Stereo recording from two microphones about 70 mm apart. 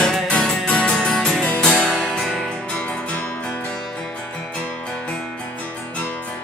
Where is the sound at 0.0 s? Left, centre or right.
Centre.